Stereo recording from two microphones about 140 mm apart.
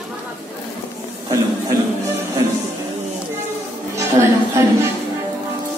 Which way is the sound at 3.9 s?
20° right (ahead or behind).